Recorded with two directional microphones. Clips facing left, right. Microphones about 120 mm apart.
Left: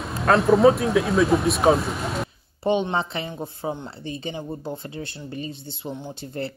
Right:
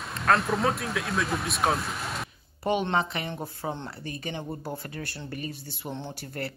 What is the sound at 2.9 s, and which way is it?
Speech, 25° left (ahead or behind).